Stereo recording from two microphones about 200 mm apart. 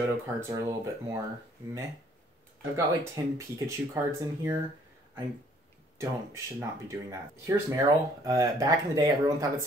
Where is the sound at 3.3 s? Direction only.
15° right (ahead or behind).